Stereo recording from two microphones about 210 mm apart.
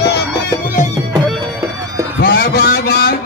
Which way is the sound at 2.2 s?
50° left (ahead or behind).